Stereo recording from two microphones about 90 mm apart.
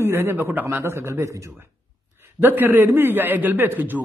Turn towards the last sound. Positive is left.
turn(degrees=-20)  # may be behind; listen again after turning